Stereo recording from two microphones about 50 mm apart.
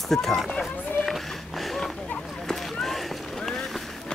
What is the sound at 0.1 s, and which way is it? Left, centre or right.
Speech, centre.